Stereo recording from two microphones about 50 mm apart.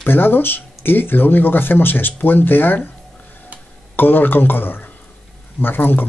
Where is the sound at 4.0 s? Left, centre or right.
Left.